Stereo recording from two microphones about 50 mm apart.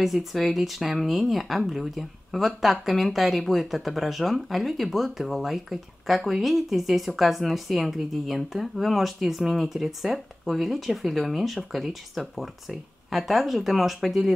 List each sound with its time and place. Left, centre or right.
0.0 s speech: centre